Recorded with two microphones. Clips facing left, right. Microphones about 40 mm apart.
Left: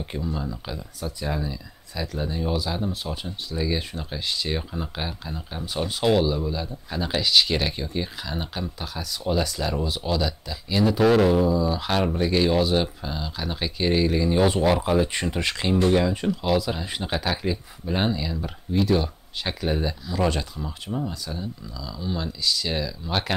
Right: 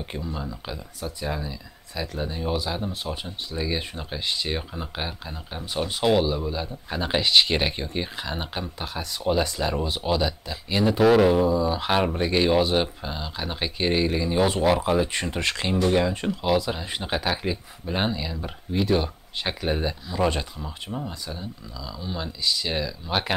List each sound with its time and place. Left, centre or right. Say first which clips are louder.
0.0 s speech: left 2 dB; centre